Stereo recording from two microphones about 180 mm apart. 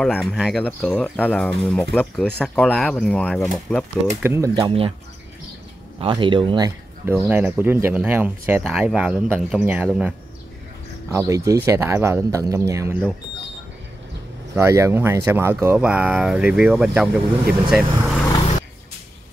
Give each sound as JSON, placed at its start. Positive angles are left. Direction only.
{"t": 0.0, "sound": "speech", "side_deg": 0}
{"t": 4.2, "sound": "speech", "side_deg": -15}
{"t": 5.9, "sound": "speech", "side_deg": -30}
{"t": 7.2, "sound": "speech", "side_deg": -10}
{"t": 11.1, "sound": "speech", "side_deg": -15}
{"t": 14.5, "sound": "speech", "side_deg": -15}